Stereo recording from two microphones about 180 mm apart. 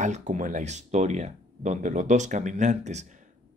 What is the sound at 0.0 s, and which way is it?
Speech, 45° right (ahead or behind).